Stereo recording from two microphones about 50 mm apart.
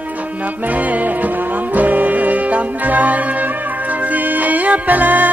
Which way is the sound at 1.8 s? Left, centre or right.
Right.